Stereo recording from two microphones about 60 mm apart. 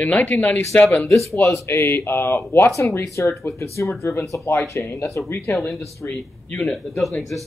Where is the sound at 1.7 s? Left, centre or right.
Left.